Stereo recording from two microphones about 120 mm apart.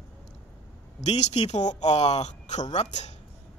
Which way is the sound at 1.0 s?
65° left (ahead or behind).